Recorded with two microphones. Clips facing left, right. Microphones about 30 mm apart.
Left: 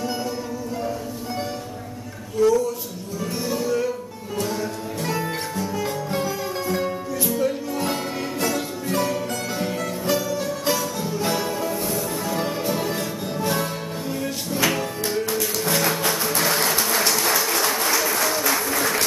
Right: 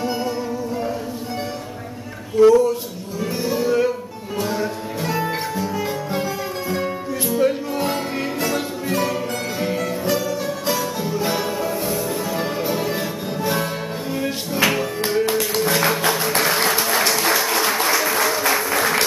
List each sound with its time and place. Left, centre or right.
2.3 s speech: right
3.4 s music: centre
7.3 s music: right
7.8 s music: centre
15.2 s music: right
15.6 s music: centre